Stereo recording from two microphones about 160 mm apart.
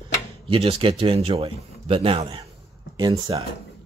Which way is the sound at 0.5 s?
35° right (ahead or behind).